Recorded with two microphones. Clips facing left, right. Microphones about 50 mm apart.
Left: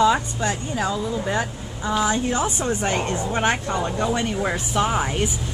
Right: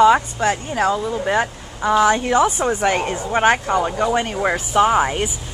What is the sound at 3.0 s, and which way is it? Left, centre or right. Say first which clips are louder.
Speech: right 5 dB; centre.